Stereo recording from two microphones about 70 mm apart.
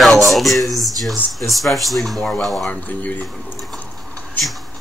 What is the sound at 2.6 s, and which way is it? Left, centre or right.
Speech, left.